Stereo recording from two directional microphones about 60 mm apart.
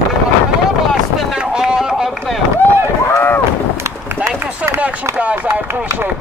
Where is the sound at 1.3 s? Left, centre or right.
Centre.